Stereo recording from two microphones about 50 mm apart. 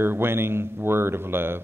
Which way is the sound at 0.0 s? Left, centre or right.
Right.